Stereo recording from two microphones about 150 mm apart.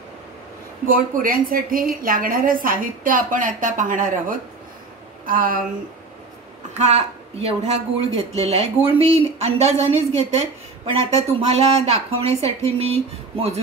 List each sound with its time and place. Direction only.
0.8 s a woman's voice: 65° right (ahead or behind)
6.8 s a woman's voice: 45° right (ahead or behind)